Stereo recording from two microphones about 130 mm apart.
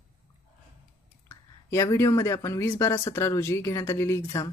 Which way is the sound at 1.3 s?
25° left (ahead or behind).